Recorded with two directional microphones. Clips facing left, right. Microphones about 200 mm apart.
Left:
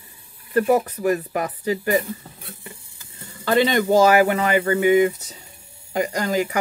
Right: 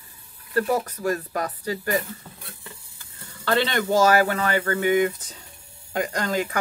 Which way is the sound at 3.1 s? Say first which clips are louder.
Left 4 dB; 15° left (ahead or behind).